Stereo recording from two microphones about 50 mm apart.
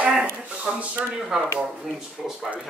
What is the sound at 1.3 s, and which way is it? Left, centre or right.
Speech, centre.